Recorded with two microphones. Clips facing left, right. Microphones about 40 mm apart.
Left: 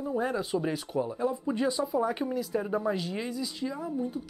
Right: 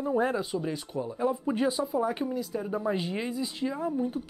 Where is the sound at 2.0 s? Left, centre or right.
Centre.